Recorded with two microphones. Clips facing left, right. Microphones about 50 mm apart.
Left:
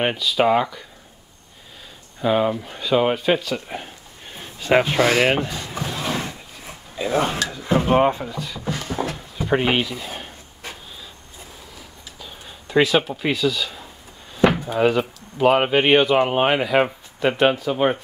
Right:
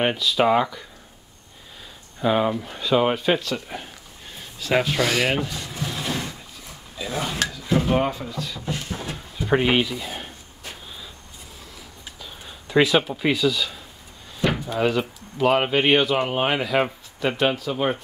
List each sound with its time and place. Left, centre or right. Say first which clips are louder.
0.0 s speech: left 1 dB; centre
2.1 s speech: left 1 dB; centre
9.5 s speech: even; centre
12.2 s speech: left 2 dB; centre
14.7 s speech: left 3 dB; centre